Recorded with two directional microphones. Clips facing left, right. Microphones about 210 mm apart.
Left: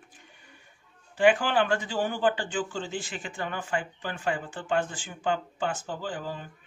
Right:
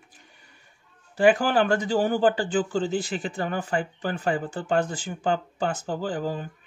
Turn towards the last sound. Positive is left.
turn(degrees=-40)  # may be behind; listen again after turning